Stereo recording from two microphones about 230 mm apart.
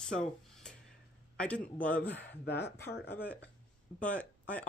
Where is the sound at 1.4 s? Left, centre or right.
Centre.